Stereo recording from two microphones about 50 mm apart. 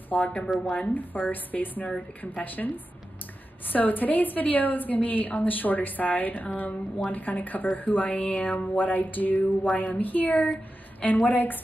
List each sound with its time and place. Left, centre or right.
0.1 s a woman's voice: left